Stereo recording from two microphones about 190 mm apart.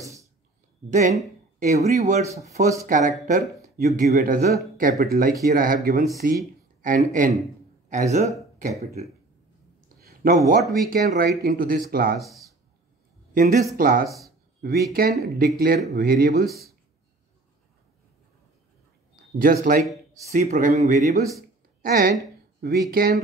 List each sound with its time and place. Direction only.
0.0 s a sound: 15° right (ahead or behind)
0.8 s speech: 40° right (ahead or behind)
3.7 s speech: 55° right (ahead or behind); by 9.0 s 35° right (ahead or behind)
9.8 s a sound: 50° right (ahead or behind)
10.3 s speech: 45° right (ahead or behind)
12.2 s speech: centre (ahead or behind)
13.3 s speech: 45° right (ahead or behind)
19.3 s speech: 45° right (ahead or behind)
21.8 s speech: 50° right (ahead or behind)